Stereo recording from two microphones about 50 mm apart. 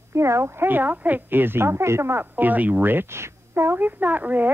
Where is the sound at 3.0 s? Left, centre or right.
Right.